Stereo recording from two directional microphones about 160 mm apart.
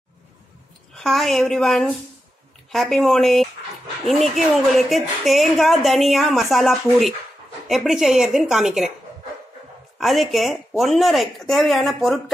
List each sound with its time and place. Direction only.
0.9 s a woman's voice: centre (ahead or behind)
9.9 s a woman's voice: centre (ahead or behind)